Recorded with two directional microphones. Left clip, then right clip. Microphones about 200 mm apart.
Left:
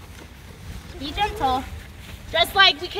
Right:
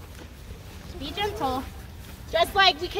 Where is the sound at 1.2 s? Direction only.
15° right (ahead or behind).